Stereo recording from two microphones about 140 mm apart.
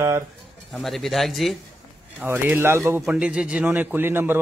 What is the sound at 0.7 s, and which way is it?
Speech, centre (ahead or behind).